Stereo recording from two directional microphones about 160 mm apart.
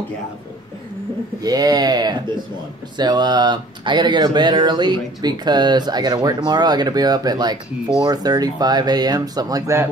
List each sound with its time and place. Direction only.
1.4 s speech: 25° right (ahead or behind)